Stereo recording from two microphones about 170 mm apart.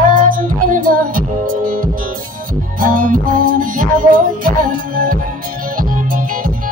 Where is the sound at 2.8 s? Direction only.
55° right (ahead or behind).